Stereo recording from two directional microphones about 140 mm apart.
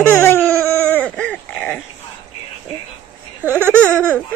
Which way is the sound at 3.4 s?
15° right (ahead or behind).